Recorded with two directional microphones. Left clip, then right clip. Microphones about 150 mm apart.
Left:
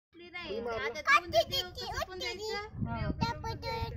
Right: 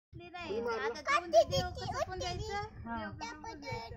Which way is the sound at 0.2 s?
10° right (ahead or behind).